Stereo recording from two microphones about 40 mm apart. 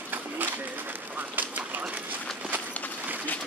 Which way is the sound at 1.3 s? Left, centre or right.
Right.